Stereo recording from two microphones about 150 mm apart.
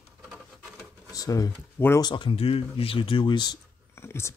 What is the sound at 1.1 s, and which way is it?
Speech, 25° left (ahead or behind).